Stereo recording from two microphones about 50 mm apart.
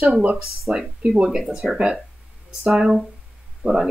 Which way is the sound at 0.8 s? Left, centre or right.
Centre.